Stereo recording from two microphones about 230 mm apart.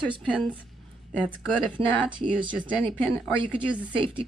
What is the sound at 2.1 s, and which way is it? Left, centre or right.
Speech, right.